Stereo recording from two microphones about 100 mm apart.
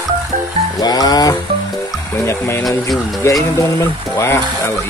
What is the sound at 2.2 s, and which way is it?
Speech, 25° left (ahead or behind).